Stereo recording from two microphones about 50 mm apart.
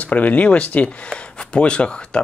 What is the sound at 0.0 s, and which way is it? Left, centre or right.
Speech, left.